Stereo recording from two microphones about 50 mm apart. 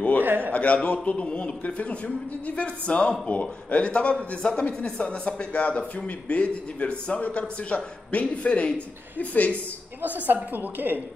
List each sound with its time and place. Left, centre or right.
0.2 s a man's voice: right
0.5 s a man's voice: left
10.0 s a woman's voice: right